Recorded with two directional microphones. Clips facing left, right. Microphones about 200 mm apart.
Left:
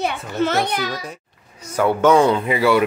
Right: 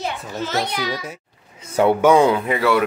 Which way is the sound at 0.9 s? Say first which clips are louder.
Right 1 dB; 5° right (ahead or behind).